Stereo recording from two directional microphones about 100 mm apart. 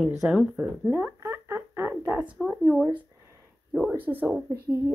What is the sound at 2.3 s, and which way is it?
Speech, 5° right (ahead or behind).